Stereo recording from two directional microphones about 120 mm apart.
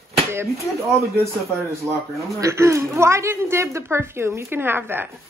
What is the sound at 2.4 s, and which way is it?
A woman's voice, 25° right (ahead or behind).